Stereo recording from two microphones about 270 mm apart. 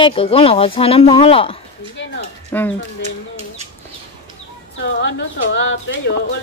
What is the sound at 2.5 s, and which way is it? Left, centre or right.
Speech, centre.